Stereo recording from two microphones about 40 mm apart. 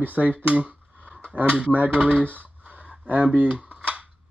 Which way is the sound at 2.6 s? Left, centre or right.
Right.